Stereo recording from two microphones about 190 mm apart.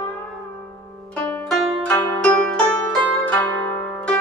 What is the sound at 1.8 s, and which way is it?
Zither, 10° left (ahead or behind).